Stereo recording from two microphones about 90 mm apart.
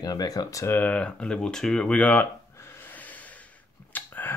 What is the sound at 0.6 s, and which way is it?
Speech, 20° left (ahead or behind).